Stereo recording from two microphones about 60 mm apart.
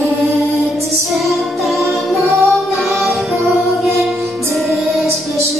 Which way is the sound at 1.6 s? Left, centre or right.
Centre.